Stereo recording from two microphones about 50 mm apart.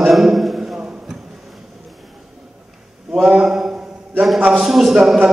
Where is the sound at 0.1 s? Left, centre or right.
Centre.